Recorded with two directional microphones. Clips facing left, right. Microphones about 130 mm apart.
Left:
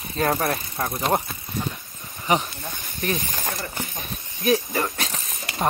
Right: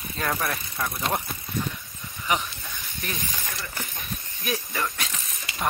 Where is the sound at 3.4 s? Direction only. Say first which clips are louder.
Left 6 dB; 50° left (ahead or behind).